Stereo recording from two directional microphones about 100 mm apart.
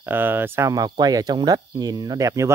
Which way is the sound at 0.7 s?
40° right (ahead or behind).